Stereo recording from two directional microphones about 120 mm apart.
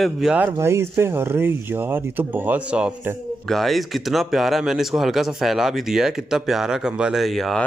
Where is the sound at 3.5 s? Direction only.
Centre (ahead or behind).